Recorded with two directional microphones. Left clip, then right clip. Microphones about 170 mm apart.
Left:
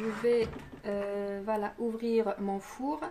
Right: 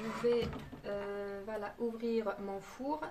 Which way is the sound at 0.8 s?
55° left (ahead or behind).